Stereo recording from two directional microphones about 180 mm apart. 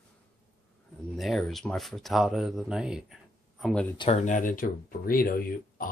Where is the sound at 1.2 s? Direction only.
Centre (ahead or behind).